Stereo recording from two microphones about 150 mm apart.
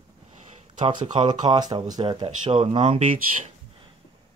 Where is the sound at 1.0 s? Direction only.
30° right (ahead or behind).